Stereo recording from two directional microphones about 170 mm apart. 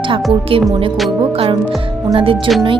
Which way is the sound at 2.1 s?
30° right (ahead or behind).